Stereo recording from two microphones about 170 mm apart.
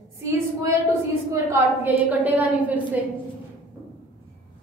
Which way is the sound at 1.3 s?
10° right (ahead or behind).